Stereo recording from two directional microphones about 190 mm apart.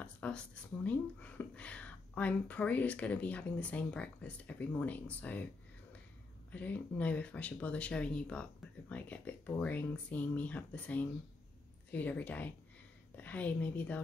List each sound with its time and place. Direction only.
0.0 s speech: 5° left (ahead or behind)
6.5 s speech: 10° left (ahead or behind)